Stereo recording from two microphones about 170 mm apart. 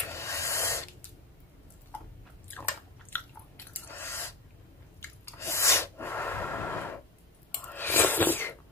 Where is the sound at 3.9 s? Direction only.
15° left (ahead or behind).